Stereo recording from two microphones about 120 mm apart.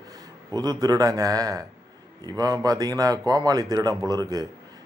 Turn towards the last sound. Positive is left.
turn(degrees=-35)  # may be behind; listen again after turning